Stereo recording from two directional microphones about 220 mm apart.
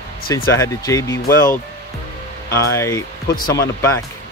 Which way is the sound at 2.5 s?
15° left (ahead or behind).